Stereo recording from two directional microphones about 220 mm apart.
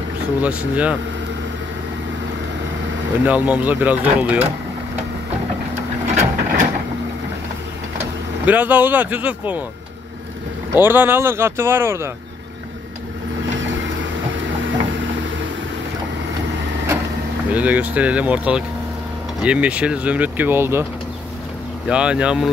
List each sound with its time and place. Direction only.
0.4 s speech: 5° right (ahead or behind)
3.3 s speech: 5° right (ahead or behind)
5.8 s printer: 30° right (ahead or behind)
8.5 s speech: 5° right (ahead or behind)
10.7 s speech: 10° right (ahead or behind)
14.6 s a sound: 60° right (ahead or behind)
16.4 s vehicle: 55° right (ahead or behind)
17.5 s speech: 5° right (ahead or behind)
21.8 s speech: 5° right (ahead or behind)